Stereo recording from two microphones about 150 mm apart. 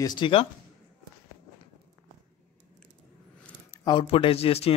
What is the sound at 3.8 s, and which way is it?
Speech, 30° left (ahead or behind).